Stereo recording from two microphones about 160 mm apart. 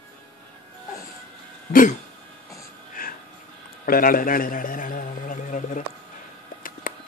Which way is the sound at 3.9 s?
65° left (ahead or behind).